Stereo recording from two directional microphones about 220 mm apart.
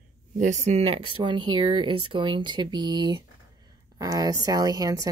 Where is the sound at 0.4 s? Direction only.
35° right (ahead or behind).